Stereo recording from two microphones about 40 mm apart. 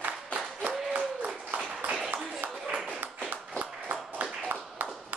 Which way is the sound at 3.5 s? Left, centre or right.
Right.